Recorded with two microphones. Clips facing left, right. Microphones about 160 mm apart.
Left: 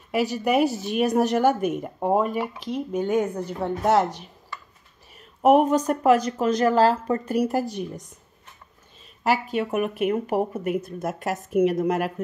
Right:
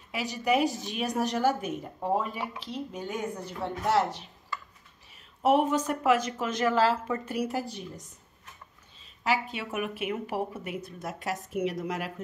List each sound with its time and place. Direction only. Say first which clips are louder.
0.1 s speech: left 5 dB; 50° left (ahead or behind)
5.4 s speech: left 6 dB; 45° left (ahead or behind)
9.2 s speech: left 6 dB; 45° left (ahead or behind)